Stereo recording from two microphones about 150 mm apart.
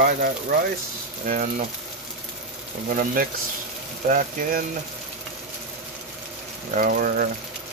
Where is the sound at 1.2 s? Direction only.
65° right (ahead or behind).